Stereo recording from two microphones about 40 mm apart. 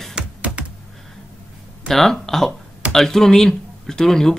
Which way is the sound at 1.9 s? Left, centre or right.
Centre.